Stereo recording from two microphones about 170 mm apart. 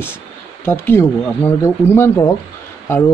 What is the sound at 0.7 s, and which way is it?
A man's voice, 15° left (ahead or behind).